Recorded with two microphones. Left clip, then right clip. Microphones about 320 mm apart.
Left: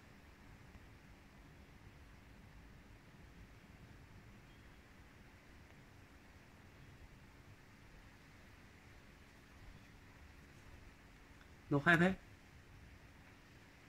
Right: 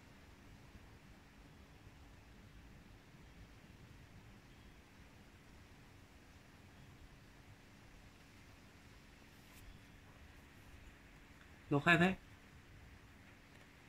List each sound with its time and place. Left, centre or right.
11.7 s speech: centre